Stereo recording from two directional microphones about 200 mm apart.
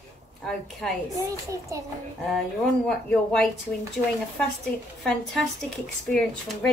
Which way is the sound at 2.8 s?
5° left (ahead or behind).